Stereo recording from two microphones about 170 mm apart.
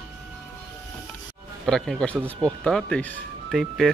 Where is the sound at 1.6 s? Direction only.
5° left (ahead or behind).